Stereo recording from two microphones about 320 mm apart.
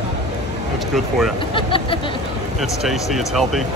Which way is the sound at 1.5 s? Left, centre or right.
Centre.